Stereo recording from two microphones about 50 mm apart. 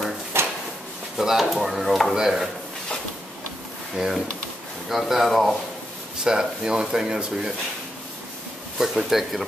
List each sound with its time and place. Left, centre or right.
0.3 s drawer open or close: right
1.1 s speech: centre
3.9 s speech: centre
6.2 s speech: centre
8.7 s speech: centre